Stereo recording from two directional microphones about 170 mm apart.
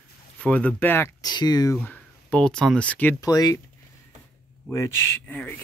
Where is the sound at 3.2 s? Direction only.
20° left (ahead or behind).